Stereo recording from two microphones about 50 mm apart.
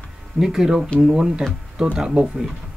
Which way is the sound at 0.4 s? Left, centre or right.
Centre.